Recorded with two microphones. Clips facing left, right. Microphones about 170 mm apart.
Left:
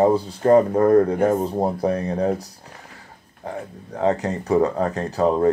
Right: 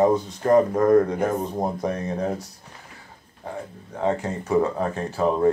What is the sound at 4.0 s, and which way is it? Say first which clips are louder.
Speech: left 3 dB; 40° left (ahead or behind).